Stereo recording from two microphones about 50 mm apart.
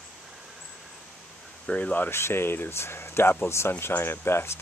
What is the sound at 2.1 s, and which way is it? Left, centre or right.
Speech, left.